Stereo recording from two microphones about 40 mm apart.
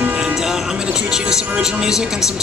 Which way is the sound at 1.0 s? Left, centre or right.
Centre.